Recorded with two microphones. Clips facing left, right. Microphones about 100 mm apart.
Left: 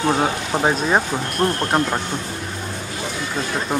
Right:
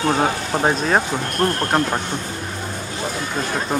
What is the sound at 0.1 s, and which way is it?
Speech, centre (ahead or behind).